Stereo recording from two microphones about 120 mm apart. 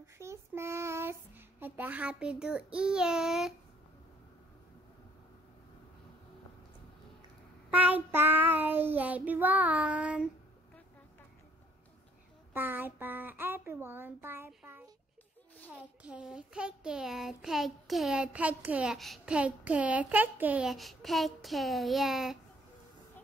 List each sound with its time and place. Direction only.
0.0 s child singing: 25° right (ahead or behind); by 3.5 s 5° right (ahead or behind)
7.7 s child singing: 15° right (ahead or behind)
12.5 s child singing: 15° right (ahead or behind)
18.9 s a child's voice: centre (ahead or behind)
19.3 s child singing: 10° right (ahead or behind)
20.6 s a child's voice: centre (ahead or behind)